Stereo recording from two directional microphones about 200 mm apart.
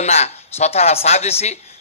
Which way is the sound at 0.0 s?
35° left (ahead or behind).